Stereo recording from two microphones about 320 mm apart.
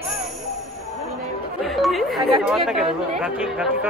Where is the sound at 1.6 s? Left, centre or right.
Centre.